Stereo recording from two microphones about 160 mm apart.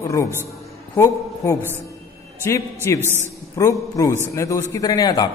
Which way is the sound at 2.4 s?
15° left (ahead or behind).